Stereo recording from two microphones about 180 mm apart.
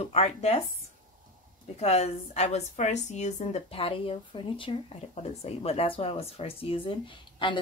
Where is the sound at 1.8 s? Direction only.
35° left (ahead or behind).